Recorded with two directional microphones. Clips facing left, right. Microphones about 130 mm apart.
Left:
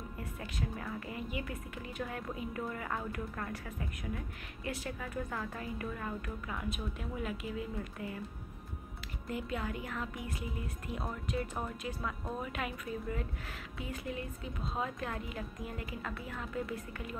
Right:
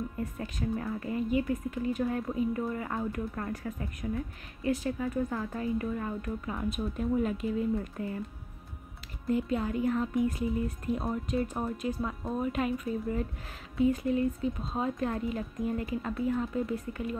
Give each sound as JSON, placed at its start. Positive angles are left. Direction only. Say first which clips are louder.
{"t": 0.2, "sound": "a woman's voice", "louder": "right 3 dB", "side_deg": -40}
{"t": 9.3, "sound": "a woman's voice", "louder": "right 8 dB", "side_deg": -30}
{"t": 11.2, "sound": "a woman's voice", "louder": "right 4 dB", "side_deg": -40}
{"t": 11.5, "sound": "a woman's voice", "louder": "right 7 dB", "side_deg": -30}